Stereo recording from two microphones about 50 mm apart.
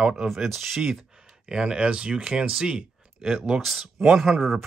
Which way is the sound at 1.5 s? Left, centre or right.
Centre.